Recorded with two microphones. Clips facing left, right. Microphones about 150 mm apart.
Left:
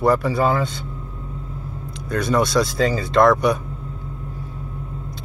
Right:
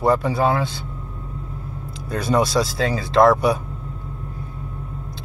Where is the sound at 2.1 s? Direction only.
30° right (ahead or behind).